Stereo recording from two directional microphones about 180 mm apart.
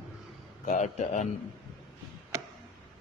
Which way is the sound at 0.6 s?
40° left (ahead or behind).